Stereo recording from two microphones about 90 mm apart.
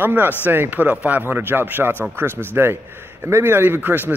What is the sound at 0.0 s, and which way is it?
Speech, 20° right (ahead or behind).